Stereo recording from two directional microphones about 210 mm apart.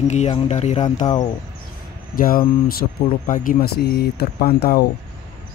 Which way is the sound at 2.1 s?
40° left (ahead or behind).